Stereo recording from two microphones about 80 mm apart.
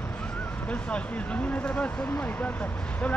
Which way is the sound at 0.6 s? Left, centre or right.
Centre.